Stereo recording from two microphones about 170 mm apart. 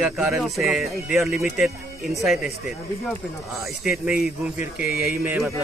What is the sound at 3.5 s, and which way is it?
Speech, centre (ahead or behind).